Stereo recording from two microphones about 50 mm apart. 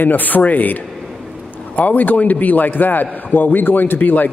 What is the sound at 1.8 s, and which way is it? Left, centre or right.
Speech, left.